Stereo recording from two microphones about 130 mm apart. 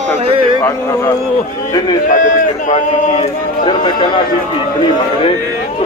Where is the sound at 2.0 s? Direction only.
75° left (ahead or behind).